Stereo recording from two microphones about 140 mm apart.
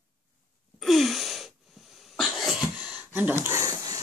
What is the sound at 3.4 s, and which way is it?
Dog, 20° right (ahead or behind).